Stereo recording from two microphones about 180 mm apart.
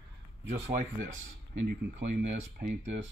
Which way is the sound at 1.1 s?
90° right.